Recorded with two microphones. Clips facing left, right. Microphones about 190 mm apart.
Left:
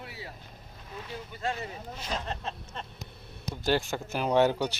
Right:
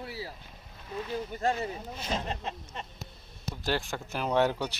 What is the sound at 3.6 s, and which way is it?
Speech, centre (ahead or behind).